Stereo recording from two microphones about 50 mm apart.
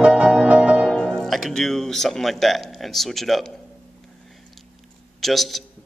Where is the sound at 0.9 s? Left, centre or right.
Centre.